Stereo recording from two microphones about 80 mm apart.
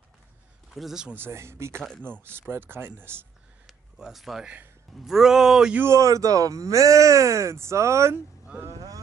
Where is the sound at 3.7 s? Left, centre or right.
Centre.